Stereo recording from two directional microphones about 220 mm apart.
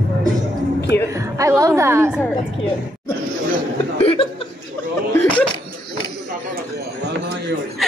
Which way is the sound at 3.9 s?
25° left (ahead or behind).